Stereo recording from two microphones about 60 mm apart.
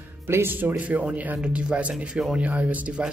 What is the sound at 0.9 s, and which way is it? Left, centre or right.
Speech, right.